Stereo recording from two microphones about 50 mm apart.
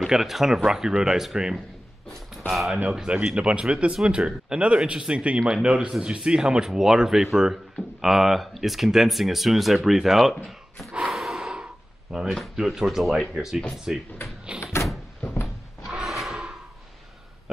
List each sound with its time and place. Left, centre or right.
0.0 s speech: centre
2.9 s speech: centre
10.9 s gasp: centre
11.5 s a sound: centre
12.5 s speech: centre
14.6 s door: left
16.0 s a sound: centre